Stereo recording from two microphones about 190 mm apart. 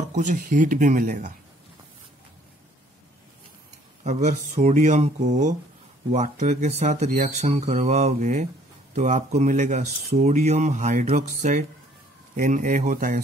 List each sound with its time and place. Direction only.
0.1 s speech: 40° right (ahead or behind)
4.0 s speech: 40° right (ahead or behind)